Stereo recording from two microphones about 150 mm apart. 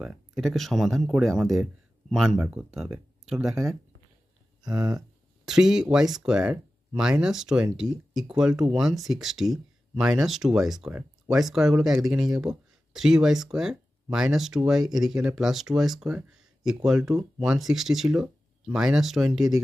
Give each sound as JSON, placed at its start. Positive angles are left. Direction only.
{"t": 0.0, "sound": "speech", "side_deg": 0}
{"t": 4.6, "sound": "speech", "side_deg": -25}
{"t": 5.4, "sound": "speech", "side_deg": -5}